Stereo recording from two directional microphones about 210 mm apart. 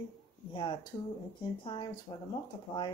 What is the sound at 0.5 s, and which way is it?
Speech, 20° left (ahead or behind).